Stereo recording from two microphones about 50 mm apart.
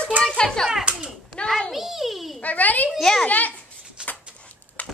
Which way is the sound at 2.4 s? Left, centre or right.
Left.